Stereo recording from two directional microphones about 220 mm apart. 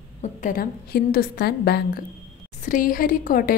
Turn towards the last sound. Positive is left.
turn(degrees=40)  # may be behind; listen again after turning